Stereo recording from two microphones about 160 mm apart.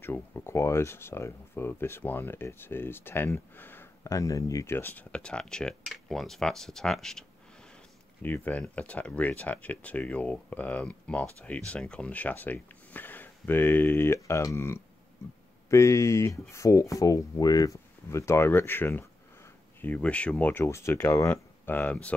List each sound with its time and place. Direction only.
0.0 s speech: 15° left (ahead or behind)